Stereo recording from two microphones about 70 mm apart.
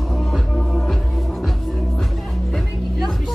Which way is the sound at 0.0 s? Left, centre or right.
Centre.